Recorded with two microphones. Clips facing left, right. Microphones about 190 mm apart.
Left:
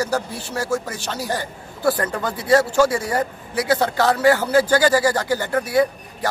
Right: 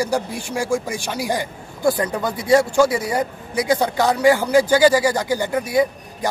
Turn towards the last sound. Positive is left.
turn(degrees=-10)  # may be behind; listen again after turning